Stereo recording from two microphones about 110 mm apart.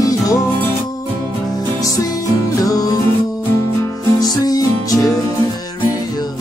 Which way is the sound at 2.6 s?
35° left (ahead or behind).